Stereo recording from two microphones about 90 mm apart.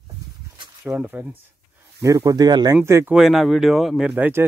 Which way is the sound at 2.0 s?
40° right (ahead or behind).